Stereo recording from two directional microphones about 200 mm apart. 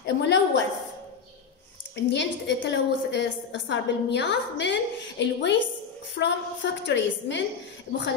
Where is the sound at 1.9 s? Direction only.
60° left (ahead or behind).